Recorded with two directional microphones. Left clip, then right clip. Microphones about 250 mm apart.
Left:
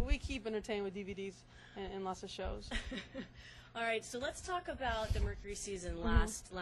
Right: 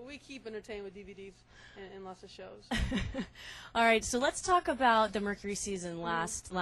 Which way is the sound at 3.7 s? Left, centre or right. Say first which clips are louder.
Right 11 dB; right.